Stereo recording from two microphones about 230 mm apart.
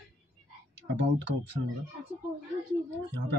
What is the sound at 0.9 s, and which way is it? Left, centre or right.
Speech, right.